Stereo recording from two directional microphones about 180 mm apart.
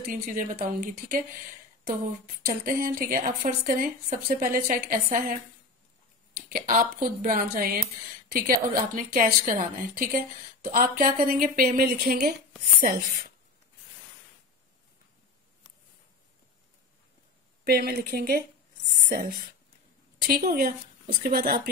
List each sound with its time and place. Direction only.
0.0 s a woman's voice: 50° right (ahead or behind)
2.4 s a woman's voice: 55° right (ahead or behind)
6.5 s a woman's voice: 50° right (ahead or behind)
17.6 s speech: 55° right (ahead or behind)